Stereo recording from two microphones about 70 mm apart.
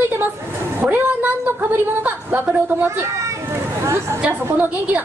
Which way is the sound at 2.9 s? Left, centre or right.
Right.